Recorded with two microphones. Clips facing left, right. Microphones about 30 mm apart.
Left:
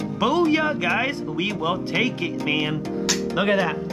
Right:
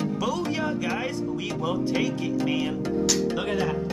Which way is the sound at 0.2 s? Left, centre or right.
Left.